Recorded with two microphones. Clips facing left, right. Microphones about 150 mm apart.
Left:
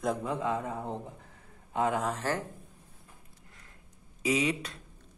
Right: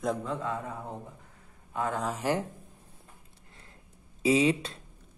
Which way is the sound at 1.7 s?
20° left (ahead or behind).